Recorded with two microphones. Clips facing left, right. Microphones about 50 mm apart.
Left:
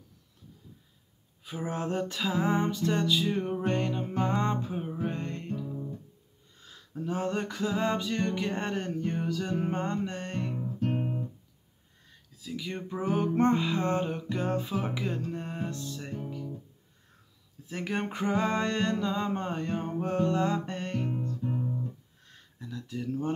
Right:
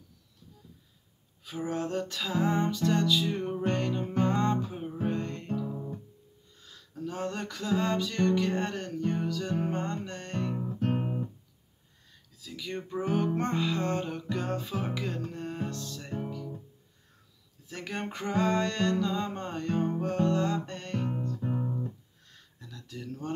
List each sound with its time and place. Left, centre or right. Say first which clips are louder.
1.4 s music: right 1 dB; centre
6.6 s music: left 1 dB; left
10.8 s music: even; right
12.4 s music: left 1 dB; centre
17.6 s music: left 4 dB; centre
21.1 s music: even; right
22.3 s a sound: left 7 dB; centre